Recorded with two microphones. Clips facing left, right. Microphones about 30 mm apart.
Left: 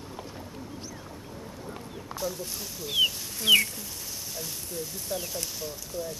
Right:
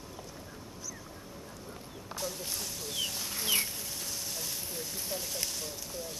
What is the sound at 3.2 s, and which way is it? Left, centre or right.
Chicken, centre.